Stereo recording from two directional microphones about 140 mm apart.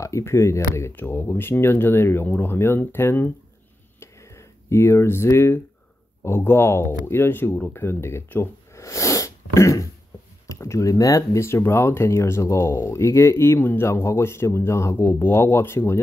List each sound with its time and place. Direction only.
0.0 s speech: 20° left (ahead or behind)
4.0 s a sound: 20° left (ahead or behind)
6.2 s speech: 15° left (ahead or behind)